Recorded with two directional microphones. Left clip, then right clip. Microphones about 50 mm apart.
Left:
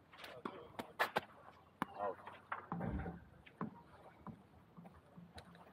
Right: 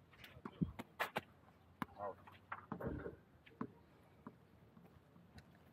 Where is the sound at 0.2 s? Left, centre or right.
Centre.